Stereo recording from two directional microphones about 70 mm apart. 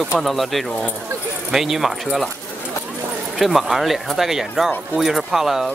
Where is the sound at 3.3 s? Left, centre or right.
Centre.